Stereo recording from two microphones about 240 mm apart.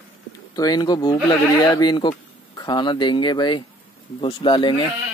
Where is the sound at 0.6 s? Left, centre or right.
Centre.